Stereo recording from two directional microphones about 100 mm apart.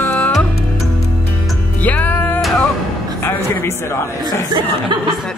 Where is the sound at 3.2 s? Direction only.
25° left (ahead or behind).